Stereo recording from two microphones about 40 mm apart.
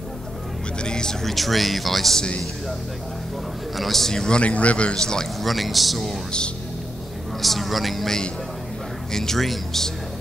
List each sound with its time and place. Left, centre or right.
0.8 s a sound: centre
1.2 s speech: centre
3.7 s speech: centre
4.1 s speech: centre
4.4 s a man's voice: left
4.9 s speech: centre
5.4 s speech: centre
7.4 s speech: centre